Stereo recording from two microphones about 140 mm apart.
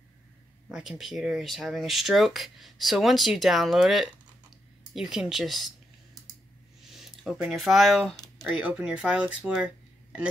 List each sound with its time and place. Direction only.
0.7 s speech: 5° right (ahead or behind)
6.9 s speech: centre (ahead or behind)